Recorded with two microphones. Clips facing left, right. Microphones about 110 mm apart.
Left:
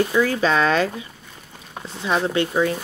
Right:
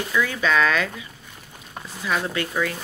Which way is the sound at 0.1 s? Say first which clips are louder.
Left 3 dB; 35° left (ahead or behind).